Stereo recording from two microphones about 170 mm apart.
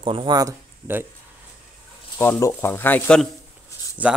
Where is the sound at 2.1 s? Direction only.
15° left (ahead or behind).